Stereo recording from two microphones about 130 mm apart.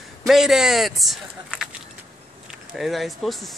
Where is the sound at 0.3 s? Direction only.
5° right (ahead or behind).